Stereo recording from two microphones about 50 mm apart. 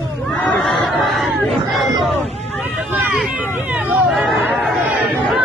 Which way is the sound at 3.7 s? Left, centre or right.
Right.